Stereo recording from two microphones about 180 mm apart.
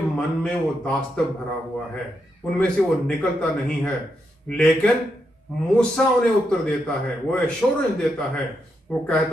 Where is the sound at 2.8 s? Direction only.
5° right (ahead or behind).